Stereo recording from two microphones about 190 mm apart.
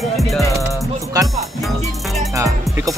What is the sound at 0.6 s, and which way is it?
Music, 15° right (ahead or behind).